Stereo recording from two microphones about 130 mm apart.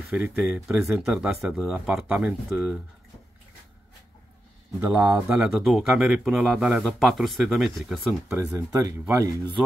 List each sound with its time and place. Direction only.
0.1 s speech: 5° right (ahead or behind)
4.7 s speech: 20° right (ahead or behind); by 8.5 s 5° right (ahead or behind)
8.5 s speech: 25° right (ahead or behind)